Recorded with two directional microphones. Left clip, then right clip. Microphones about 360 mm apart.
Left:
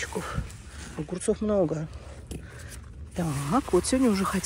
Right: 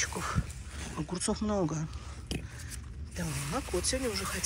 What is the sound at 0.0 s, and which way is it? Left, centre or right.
Speech, centre.